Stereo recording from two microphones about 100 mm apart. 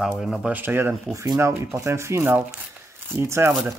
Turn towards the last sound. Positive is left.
turn(degrees=-30)  # may be behind; listen again after turning